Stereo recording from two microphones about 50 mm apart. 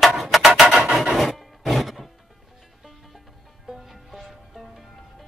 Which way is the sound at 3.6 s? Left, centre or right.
Centre.